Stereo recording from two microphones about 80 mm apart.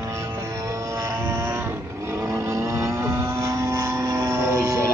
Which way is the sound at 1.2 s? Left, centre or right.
Right.